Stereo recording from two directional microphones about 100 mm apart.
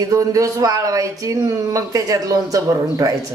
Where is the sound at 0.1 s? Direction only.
35° right (ahead or behind).